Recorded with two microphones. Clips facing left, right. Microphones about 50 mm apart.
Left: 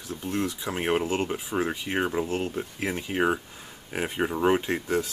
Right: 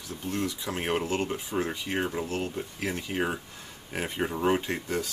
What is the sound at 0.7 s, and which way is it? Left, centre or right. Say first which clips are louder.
Speech: left 3 dB; centre.